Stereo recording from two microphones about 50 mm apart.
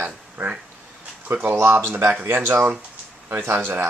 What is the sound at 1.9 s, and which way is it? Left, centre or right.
Speech, right.